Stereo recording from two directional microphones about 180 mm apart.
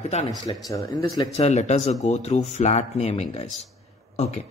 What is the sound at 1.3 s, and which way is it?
Speech, 40° left (ahead or behind).